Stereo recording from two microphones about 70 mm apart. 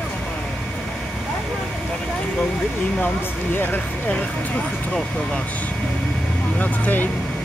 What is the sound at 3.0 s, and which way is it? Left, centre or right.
Speech, left.